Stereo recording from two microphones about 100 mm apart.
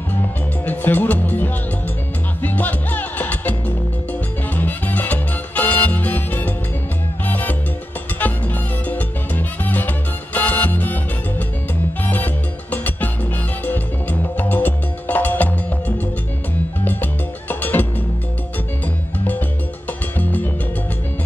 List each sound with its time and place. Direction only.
0.7 s music: 15° left (ahead or behind)
8.2 s salsa music: 15° left (ahead or behind)
12.7 s music: 15° left (ahead or behind)
16.8 s music: 20° left (ahead or behind)
20.2 s music: 15° left (ahead or behind)